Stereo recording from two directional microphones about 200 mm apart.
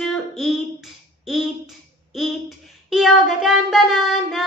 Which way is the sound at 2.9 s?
Centre (ahead or behind).